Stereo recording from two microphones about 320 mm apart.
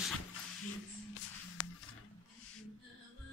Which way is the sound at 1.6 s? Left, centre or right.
Left.